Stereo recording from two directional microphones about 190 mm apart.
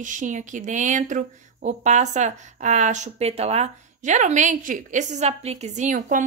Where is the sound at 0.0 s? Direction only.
40° right (ahead or behind).